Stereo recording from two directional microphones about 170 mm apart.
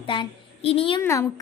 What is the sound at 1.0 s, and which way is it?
Speech, 15° left (ahead or behind).